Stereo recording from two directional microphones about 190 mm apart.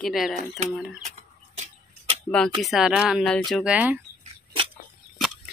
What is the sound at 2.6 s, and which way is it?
Speech, centre (ahead or behind).